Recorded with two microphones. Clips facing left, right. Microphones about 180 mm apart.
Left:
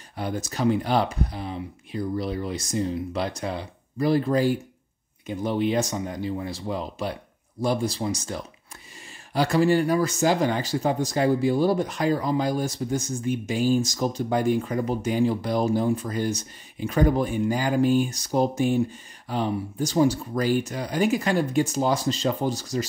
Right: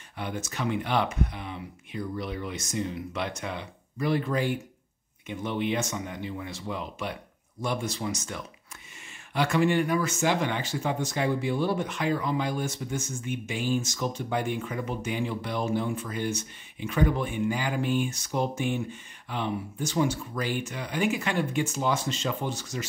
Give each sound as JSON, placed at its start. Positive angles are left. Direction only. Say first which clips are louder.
{"t": 0.2, "sound": "speech", "louder": "left 6 dB", "side_deg": 35}